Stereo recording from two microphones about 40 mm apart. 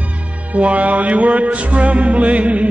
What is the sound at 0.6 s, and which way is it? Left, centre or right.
Music, right.